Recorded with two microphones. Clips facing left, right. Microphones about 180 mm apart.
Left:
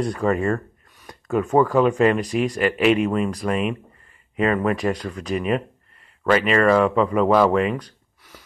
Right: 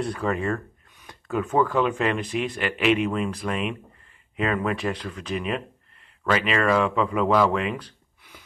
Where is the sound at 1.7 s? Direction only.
40° left (ahead or behind).